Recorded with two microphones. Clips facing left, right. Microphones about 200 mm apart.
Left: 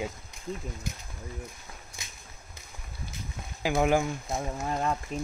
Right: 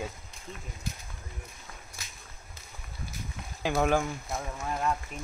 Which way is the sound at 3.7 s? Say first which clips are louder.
Left 2 dB; 15° left (ahead or behind).